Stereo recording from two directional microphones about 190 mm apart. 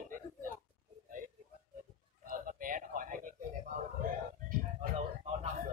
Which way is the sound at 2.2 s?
45° right (ahead or behind).